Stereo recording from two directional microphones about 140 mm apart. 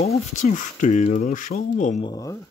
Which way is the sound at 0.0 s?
55° left (ahead or behind).